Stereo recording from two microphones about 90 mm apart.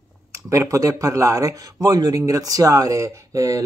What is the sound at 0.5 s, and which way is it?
Speech, 35° right (ahead or behind).